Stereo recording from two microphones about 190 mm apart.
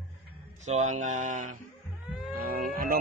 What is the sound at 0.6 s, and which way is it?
Speech, 35° right (ahead or behind).